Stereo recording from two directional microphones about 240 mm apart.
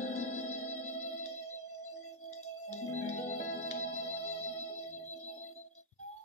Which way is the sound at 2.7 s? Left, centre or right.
Left.